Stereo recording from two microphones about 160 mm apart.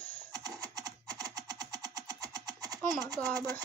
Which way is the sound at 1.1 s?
25° right (ahead or behind).